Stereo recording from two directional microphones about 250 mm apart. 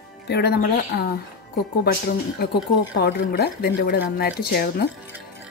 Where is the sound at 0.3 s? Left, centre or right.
Left.